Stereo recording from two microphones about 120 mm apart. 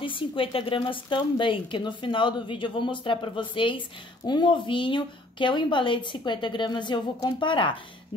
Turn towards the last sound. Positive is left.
turn(degrees=45)  # may be behind; listen again after turning